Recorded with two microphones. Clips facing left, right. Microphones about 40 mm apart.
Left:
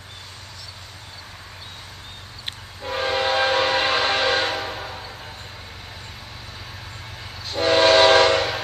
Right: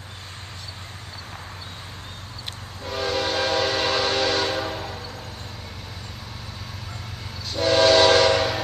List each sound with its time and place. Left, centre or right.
2.8 s train: left
7.4 s train: left